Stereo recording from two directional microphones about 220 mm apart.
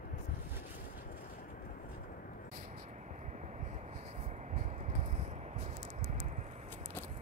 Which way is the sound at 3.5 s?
30° right (ahead or behind).